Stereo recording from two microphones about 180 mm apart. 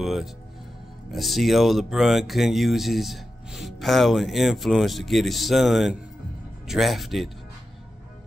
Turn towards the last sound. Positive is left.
turn(degrees=0)  # may be behind; listen again after turning